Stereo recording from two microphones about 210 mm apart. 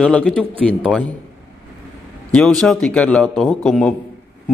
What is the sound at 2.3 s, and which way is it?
Speech, centre (ahead or behind).